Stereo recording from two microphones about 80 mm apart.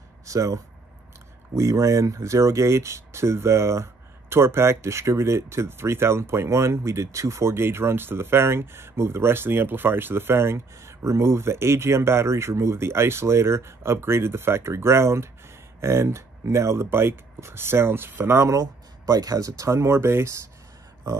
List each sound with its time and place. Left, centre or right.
0.3 s speech: right
18.6 s speech: right